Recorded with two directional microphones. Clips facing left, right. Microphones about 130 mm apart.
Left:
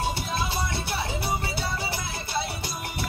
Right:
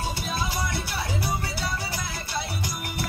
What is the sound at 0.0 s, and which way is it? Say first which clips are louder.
Music: left 1 dB; 25° left (ahead or behind).